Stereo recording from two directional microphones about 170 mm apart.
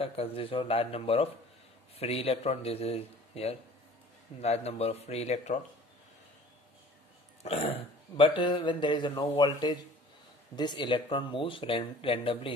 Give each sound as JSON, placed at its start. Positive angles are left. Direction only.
{"t": 0.0, "sound": "speech", "side_deg": 35}
{"t": 7.4, "sound": "speech", "side_deg": 35}